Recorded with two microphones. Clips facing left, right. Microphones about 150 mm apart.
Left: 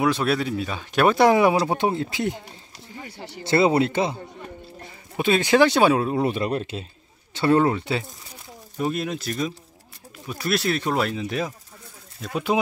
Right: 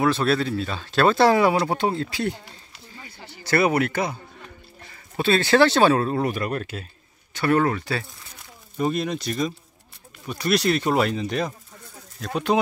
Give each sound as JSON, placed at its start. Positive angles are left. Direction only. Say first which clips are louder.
{"t": 0.0, "sound": "speech", "louder": "right 1 dB", "side_deg": 10}
{"t": 3.0, "sound": "a sound", "louder": "left 7 dB", "side_deg": 70}
{"t": 3.4, "sound": "a man's voice", "louder": "left 2 dB", "side_deg": 25}
{"t": 6.2, "sound": "speech", "louder": "left 2 dB", "side_deg": 25}
{"t": 8.7, "sound": "speech", "louder": "right 2 dB", "side_deg": 0}